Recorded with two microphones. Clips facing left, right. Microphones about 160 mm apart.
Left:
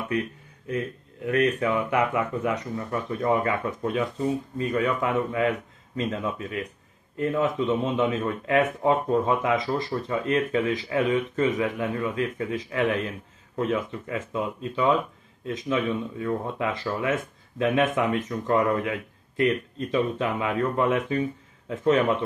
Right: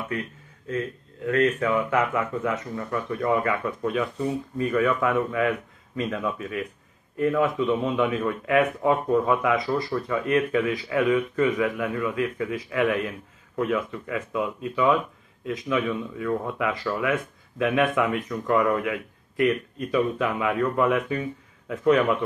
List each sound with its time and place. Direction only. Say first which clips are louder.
1.2 s speech: right 1 dB; 20° left (ahead or behind)